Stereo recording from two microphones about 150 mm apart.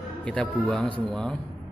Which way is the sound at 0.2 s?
5° left (ahead or behind).